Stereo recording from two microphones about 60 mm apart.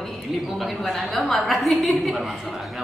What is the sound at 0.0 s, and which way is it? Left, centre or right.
A woman's voice, centre.